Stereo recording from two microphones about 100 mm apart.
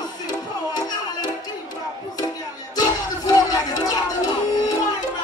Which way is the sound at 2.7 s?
40° left (ahead or behind).